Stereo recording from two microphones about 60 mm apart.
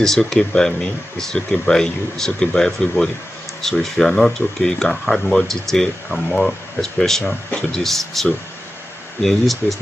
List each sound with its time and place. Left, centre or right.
0.0 s speech: centre
7.2 s speech: centre
7.8 s speech: centre